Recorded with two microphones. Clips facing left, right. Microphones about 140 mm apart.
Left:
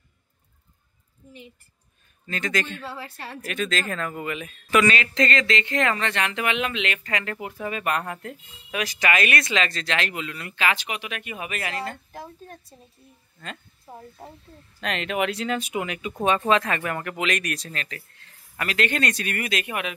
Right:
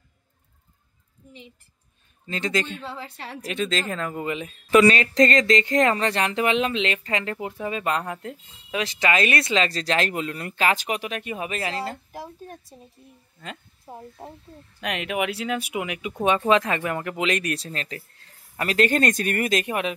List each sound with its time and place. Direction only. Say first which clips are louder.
2.2 s speech: right 2 dB; 25° right (ahead or behind)
2.8 s a woman's voice: even; centre (ahead or behind)
3.3 s speech: right 1 dB; 25° right (ahead or behind)
12.1 s a woman's voice: right 2 dB; 10° right (ahead or behind); by 20.0 s 35° right (ahead or behind)